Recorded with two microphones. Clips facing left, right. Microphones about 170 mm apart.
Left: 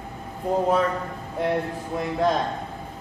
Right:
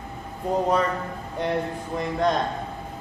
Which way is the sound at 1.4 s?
5° left (ahead or behind).